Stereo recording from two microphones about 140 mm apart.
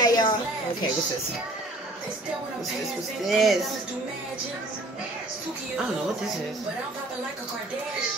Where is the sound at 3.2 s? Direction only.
Centre (ahead or behind).